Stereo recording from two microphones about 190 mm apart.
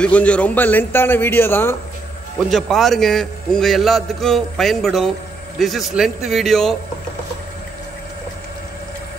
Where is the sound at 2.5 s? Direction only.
Centre (ahead or behind).